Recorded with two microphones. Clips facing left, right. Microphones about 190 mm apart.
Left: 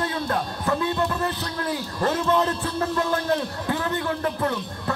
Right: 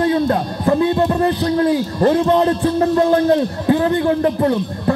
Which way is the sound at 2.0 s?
30° right (ahead or behind).